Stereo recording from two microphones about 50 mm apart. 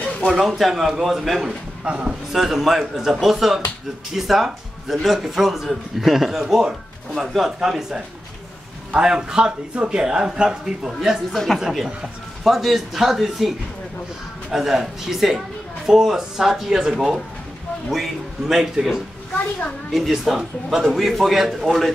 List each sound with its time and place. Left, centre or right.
0.3 s a man's voice: centre
1.9 s a man's voice: right
2.3 s a man's voice: centre
10.9 s a man's voice: centre
11.3 s a woman's voice: centre
11.6 s a man's voice: centre
20.8 s a man's voice: centre